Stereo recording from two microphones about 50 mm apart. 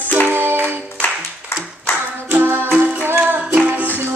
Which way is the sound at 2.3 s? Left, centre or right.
Right.